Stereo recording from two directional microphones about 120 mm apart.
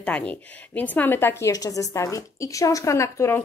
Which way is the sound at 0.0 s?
10° left (ahead or behind).